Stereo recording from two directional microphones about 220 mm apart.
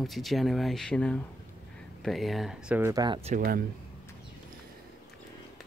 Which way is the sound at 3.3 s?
40° right (ahead or behind).